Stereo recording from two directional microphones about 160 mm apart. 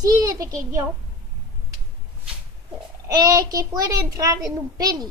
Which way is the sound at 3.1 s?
25° right (ahead or behind).